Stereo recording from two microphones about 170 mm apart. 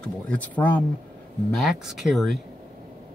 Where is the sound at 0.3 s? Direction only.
10° left (ahead or behind).